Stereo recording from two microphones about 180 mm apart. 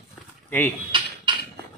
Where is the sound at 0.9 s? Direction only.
25° right (ahead or behind).